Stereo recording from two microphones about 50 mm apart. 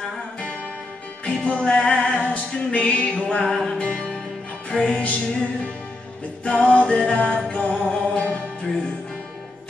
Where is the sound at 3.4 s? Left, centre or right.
Centre.